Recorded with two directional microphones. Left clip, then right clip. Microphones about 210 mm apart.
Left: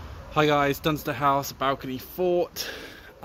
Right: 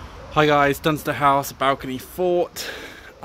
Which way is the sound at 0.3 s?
Centre (ahead or behind).